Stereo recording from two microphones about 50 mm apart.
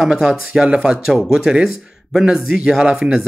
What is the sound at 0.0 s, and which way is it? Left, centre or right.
Speech, centre.